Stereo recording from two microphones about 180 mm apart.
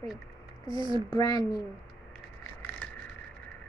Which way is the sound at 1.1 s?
20° left (ahead or behind).